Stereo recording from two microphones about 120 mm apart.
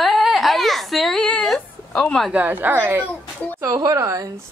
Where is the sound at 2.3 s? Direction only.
15° right (ahead or behind).